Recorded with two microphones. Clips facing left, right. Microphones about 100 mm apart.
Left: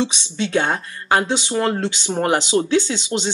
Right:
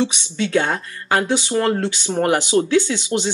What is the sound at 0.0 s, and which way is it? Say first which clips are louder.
Speech: right 1 dB; 20° left (ahead or behind).